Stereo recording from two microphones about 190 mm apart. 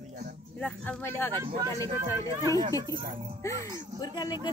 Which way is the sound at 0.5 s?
5° left (ahead or behind).